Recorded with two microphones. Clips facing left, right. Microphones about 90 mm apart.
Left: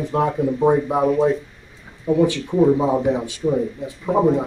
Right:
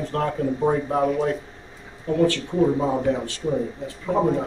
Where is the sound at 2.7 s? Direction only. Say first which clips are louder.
Left 4 dB; 20° left (ahead or behind).